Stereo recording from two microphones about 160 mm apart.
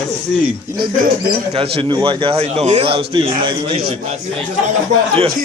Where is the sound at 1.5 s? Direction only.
35° right (ahead or behind).